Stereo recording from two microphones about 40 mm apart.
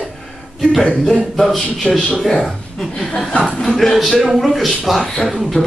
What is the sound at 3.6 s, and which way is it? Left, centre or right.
A man's voice, centre.